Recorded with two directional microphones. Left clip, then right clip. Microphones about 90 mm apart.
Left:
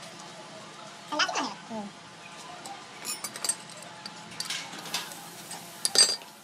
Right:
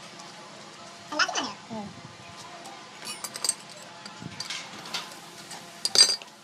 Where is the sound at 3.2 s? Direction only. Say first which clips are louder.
Right 4 dB; 40° right (ahead or behind).